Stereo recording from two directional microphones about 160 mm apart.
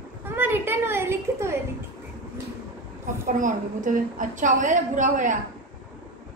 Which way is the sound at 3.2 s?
55° right (ahead or behind).